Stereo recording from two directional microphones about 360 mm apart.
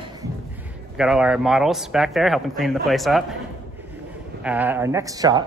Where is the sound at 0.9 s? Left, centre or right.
Centre.